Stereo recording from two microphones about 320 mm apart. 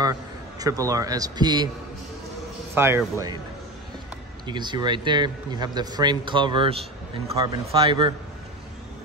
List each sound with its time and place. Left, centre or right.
0.0 s a man's voice: centre
2.7 s speech: centre
4.5 s speech: centre